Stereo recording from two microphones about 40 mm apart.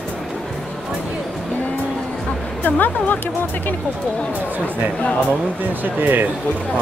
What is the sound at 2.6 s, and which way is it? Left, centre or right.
Speech, left.